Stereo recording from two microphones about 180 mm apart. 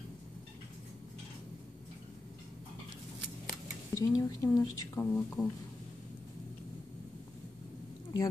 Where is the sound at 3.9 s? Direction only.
20° left (ahead or behind).